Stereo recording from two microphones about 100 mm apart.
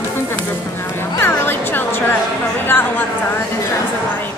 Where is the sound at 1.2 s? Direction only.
20° left (ahead or behind).